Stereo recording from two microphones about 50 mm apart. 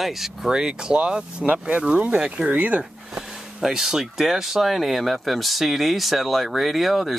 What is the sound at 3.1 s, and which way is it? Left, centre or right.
Speech, centre.